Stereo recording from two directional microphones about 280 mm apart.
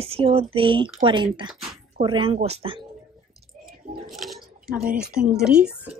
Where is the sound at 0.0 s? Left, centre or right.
Centre.